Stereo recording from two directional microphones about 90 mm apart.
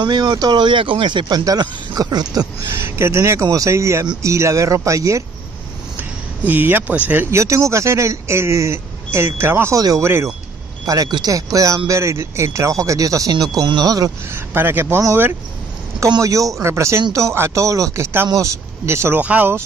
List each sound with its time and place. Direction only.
0.0 s speech: 55° right (ahead or behind)
1.4 s speech: 45° right (ahead or behind)
2.6 s speech: 30° right (ahead or behind)
5.9 s speech: 20° right (ahead or behind)
7.2 s speech: 35° right (ahead or behind)
9.8 s speech: 40° right (ahead or behind)
10.0 s speech: 30° right (ahead or behind)
10.9 s speech: 45° right (ahead or behind)
14.3 s speech: 25° right (ahead or behind)
16.2 s speech: 40° right (ahead or behind)
19.1 s speech: 20° right (ahead or behind)